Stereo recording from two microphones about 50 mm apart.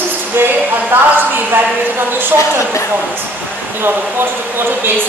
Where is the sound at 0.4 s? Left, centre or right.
Right.